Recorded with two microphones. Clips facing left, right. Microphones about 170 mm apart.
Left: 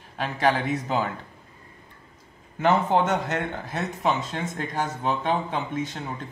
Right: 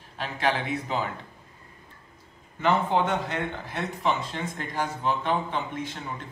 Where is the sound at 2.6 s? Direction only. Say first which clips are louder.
Left 3 dB; 45° left (ahead or behind).